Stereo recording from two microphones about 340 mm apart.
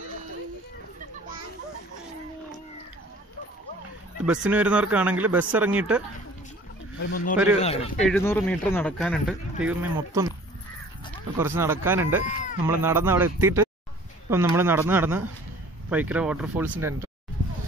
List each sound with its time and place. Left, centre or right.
4.3 s speech: centre
7.0 s speech: left
7.6 s speech: centre
8.0 s speech: centre
11.3 s speech: centre